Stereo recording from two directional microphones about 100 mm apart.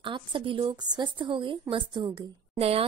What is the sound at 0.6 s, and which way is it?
A woman's voice, 45° right (ahead or behind).